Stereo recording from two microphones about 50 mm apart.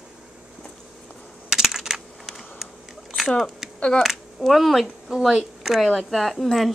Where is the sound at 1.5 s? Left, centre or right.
Centre.